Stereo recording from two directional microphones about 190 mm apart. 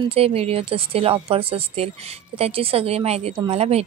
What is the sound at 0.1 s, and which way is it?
A woman's voice, 30° right (ahead or behind).